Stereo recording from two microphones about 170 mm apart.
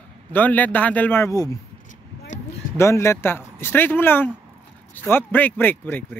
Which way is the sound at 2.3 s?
45° left (ahead or behind).